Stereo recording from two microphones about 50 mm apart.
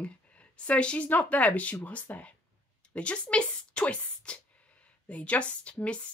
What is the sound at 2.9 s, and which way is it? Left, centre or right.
Speech, left.